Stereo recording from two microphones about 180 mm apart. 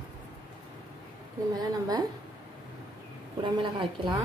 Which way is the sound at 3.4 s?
25° right (ahead or behind).